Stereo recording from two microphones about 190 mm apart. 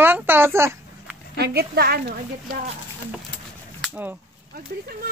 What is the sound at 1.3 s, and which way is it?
Speech, 55° right (ahead or behind).